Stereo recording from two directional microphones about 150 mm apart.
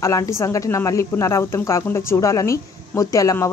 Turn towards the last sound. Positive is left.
turn(degrees=20)  # may be behind; listen again after turning